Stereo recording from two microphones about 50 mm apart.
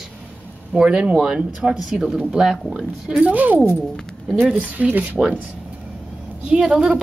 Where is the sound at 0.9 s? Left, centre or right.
Right.